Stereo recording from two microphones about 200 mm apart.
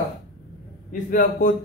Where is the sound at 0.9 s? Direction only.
45° left (ahead or behind).